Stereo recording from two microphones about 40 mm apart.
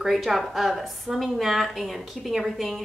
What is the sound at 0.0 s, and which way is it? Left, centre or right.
Speech, centre.